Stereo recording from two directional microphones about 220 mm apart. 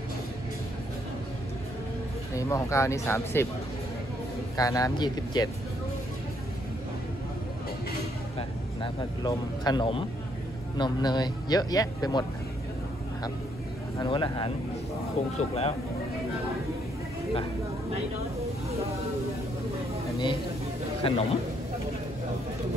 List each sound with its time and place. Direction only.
2.3 s speech: 15° left (ahead or behind)
4.6 s speech: 15° left (ahead or behind)
8.4 s speech: 20° left (ahead or behind)
13.9 s speech: 20° left (ahead or behind)
20.1 s a sound: 20° left (ahead or behind)
21.0 s speech: 25° left (ahead or behind)